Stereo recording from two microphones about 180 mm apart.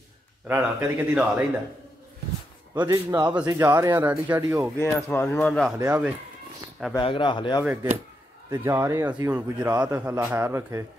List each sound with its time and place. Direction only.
0.5 s speech: 10° right (ahead or behind)
2.7 s a man's voice: 20° right (ahead or behind)
4.7 s speech: 15° left (ahead or behind)
5.8 s speech: 15° right (ahead or behind)
7.0 s speech: 25° left (ahead or behind)
7.6 s speech: 10° right (ahead or behind)